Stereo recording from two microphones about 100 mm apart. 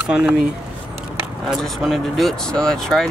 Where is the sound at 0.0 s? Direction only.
10° right (ahead or behind).